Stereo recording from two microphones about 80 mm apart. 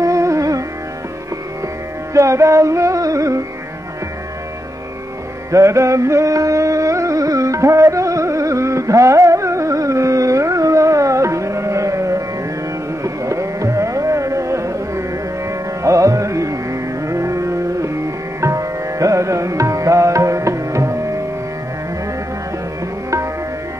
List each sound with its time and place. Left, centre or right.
0.0 s music: right
2.1 s music: right
5.5 s music: right
13.0 s carnatic music: right
15.8 s music: right